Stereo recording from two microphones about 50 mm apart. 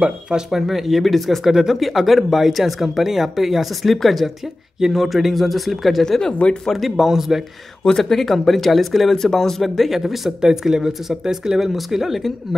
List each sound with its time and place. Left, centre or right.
0.5 s speech: centre
1.5 s speech: centre
6.3 s speech: left
6.6 s speech: centre
7.8 s speech: centre